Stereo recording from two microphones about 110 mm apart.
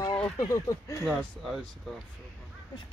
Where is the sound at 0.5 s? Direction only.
25° left (ahead or behind).